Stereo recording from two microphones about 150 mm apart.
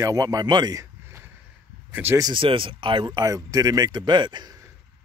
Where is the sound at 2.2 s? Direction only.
35° right (ahead or behind).